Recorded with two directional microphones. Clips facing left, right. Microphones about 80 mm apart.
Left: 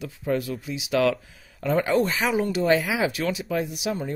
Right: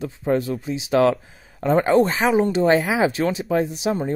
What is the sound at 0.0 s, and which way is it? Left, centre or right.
Speech, right.